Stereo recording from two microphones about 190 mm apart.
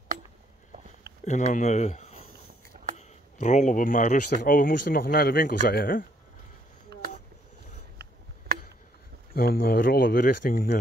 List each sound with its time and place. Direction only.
1.2 s speech: 40° left (ahead or behind)
6.9 s a sound: 60° right (ahead or behind)
9.3 s speech: 50° left (ahead or behind)